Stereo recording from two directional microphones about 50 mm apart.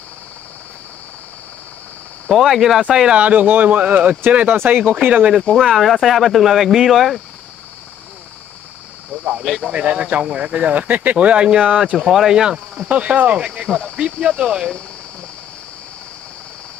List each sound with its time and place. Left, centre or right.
2.2 s speech: centre
2.8 s speech: centre
3.2 s speech: right
4.5 s speech: right
5.0 s speech: right
5.4 s speech: centre
9.4 s speech: centre
9.7 s speech: right
12.7 s speech: right